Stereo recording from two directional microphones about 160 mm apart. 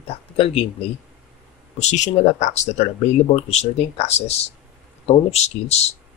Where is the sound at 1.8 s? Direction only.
45° left (ahead or behind).